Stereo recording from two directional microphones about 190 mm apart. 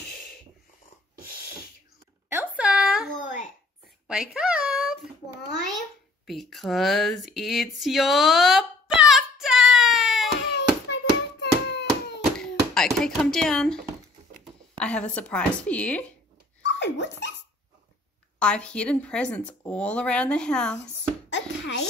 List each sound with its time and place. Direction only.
2.2 s a sound: 10° right (ahead or behind)
3.2 s babbling: 40° left (ahead or behind)
4.1 s a sound: 5° right (ahead or behind)
6.2 s a sound: centre (ahead or behind)
10.5 s hands: 65° left (ahead or behind)
12.7 s speech: 5° left (ahead or behind)
16.6 s dog: 70° left (ahead or behind)
18.4 s speech: 5° left (ahead or behind)
21.3 s music: 70° left (ahead or behind)